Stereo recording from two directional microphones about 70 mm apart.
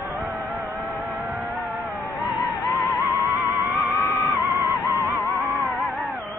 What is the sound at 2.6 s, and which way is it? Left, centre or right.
Music, left.